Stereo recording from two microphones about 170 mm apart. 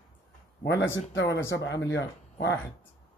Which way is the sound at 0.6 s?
90° left.